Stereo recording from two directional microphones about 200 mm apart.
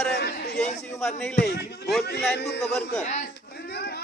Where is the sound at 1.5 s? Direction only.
55° left (ahead or behind).